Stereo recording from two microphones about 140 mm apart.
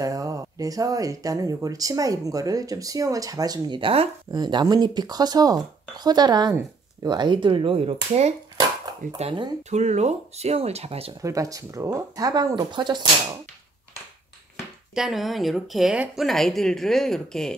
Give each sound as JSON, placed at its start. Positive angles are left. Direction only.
{"t": 0.0, "sound": "speech", "side_deg": -25}
{"t": 9.6, "sound": "speech", "side_deg": -55}
{"t": 11.1, "sound": "speech", "side_deg": -25}
{"t": 15.0, "sound": "speech", "side_deg": 0}